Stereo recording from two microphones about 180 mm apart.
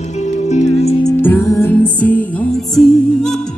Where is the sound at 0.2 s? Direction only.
40° left (ahead or behind).